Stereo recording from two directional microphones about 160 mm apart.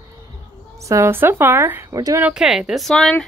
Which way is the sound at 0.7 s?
20° right (ahead or behind).